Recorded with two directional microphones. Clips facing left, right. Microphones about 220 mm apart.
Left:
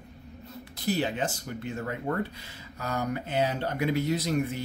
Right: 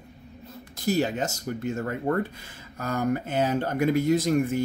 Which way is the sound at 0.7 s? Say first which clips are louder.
Right 4 dB; 45° right (ahead or behind).